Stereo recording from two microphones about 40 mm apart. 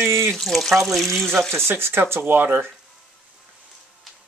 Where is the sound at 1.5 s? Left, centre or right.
Right.